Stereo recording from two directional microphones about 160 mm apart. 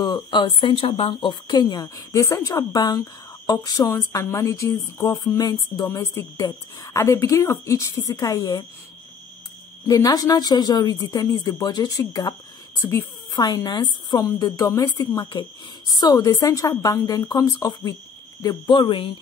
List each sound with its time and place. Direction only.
0.0 s a woman's voice: 25° left (ahead or behind)
9.8 s a woman's voice: 25° left (ahead or behind)